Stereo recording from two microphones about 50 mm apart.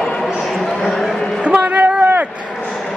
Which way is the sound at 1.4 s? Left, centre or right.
Right.